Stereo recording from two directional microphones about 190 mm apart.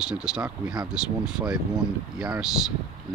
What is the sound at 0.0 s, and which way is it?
Speech, 5° right (ahead or behind).